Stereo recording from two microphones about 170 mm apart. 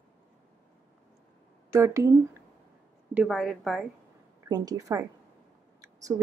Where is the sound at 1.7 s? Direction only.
15° right (ahead or behind).